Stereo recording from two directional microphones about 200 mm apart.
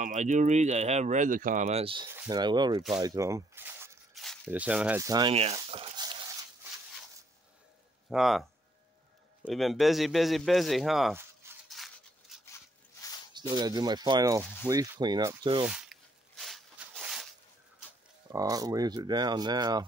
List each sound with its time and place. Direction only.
0.0 s speech: 40° right (ahead or behind); by 4.0 s 10° right (ahead or behind)
4.1 s a sound: centre (ahead or behind)
4.5 s speech: 5° right (ahead or behind)
5.3 s a sound: 30° right (ahead or behind)
8.1 s a man's voice: centre (ahead or behind)
11.7 s a sound: centre (ahead or behind)
13.3 s speech: 20° right (ahead or behind)
15.6 s walk: 5° right (ahead or behind)
18.3 s speech: 15° right (ahead or behind)